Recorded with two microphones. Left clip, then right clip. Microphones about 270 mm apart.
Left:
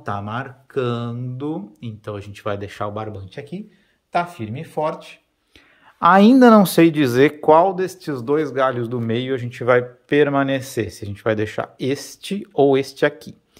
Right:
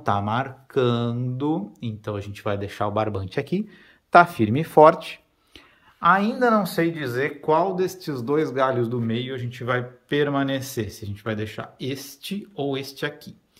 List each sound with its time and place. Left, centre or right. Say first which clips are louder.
0.0 s speech: right 3 dB; centre
5.9 s speech: left 7 dB; left
7.4 s speech: left 4 dB; centre
9.0 s speech: left 6 dB; centre